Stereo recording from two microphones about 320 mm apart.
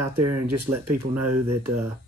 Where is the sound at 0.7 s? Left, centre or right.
Centre.